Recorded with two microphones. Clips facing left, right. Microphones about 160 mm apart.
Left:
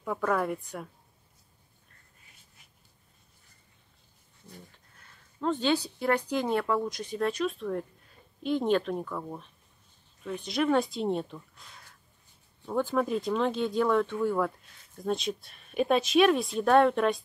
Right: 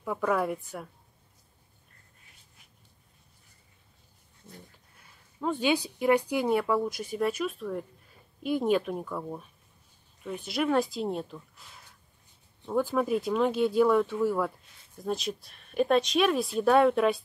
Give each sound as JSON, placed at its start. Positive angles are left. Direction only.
{"t": 0.0, "sound": "speech", "side_deg": -5}
{"t": 4.4, "sound": "speech", "side_deg": -20}
{"t": 5.0, "sound": "speech", "side_deg": -10}